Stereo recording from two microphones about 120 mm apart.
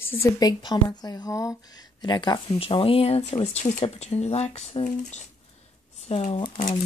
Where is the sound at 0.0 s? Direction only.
20° left (ahead or behind).